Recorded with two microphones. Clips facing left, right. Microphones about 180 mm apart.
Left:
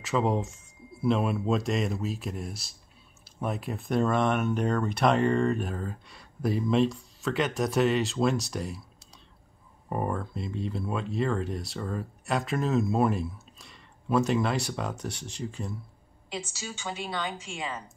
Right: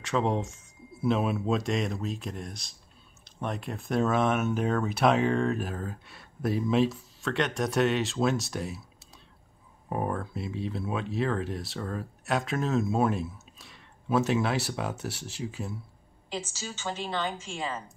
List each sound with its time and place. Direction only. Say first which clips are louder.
0.0 s speech: left 1 dB; centre (ahead or behind)
9.8 s speech: even; centre (ahead or behind)